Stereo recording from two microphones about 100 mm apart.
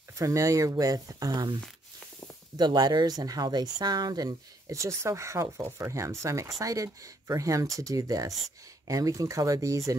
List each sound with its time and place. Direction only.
0.2 s speech: 30° right (ahead or behind)